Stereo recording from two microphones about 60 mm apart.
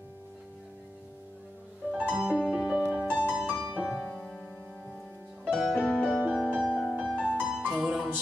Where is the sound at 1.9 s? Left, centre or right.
Centre.